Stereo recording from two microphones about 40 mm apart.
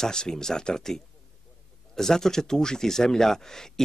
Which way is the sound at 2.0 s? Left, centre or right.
Centre.